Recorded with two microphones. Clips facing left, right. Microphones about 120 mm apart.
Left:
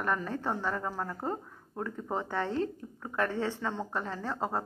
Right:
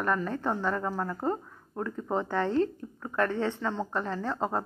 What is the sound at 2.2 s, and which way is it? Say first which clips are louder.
A woman's voice: right 5 dB; 15° left (ahead or behind).